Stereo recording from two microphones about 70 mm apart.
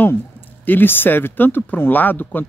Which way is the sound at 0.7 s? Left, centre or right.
Left.